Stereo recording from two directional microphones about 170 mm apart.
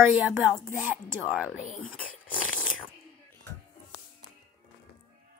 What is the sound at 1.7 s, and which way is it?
Speech, 5° left (ahead or behind).